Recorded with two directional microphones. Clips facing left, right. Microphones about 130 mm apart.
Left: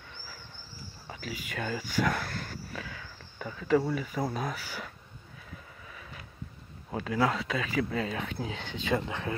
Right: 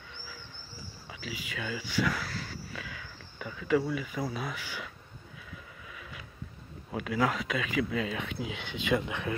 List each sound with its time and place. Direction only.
1.2 s speech: 50° left (ahead or behind)
2.7 s a sound: 35° left (ahead or behind)
4.3 s speech: 45° left (ahead or behind)
6.9 s speech: 30° left (ahead or behind)